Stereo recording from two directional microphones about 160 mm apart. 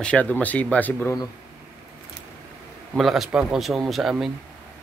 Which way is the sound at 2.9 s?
Centre (ahead or behind).